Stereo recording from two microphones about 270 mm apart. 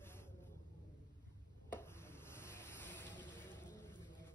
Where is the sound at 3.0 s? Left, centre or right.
Centre.